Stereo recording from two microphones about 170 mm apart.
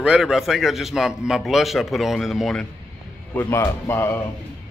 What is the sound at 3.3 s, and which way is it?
Speech, 15° left (ahead or behind).